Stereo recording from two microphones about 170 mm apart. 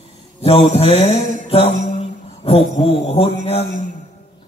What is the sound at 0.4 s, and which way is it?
Mantra, 35° left (ahead or behind).